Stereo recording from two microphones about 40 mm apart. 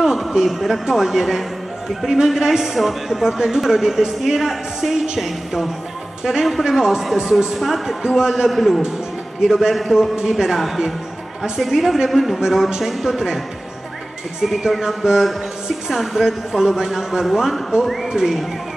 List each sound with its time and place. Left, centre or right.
0.0 s a sound: centre
0.5 s speech: centre
7.5 s speech: centre
8.2 s speech: centre
8.5 s speech: centre
9.4 s speech: centre
12.4 s speech: centre
14.4 s speech: centre
16.6 s speech: centre